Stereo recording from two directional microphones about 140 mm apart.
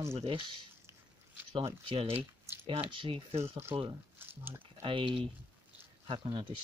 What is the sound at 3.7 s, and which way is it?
Speech, 15° right (ahead or behind).